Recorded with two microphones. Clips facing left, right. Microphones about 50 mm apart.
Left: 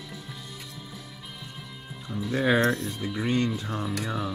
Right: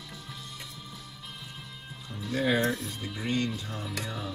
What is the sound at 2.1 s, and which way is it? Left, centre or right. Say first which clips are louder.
Music: left 4 dB; centre.